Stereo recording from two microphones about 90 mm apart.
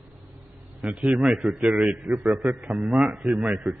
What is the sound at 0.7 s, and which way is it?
A man's voice, 10° right (ahead or behind).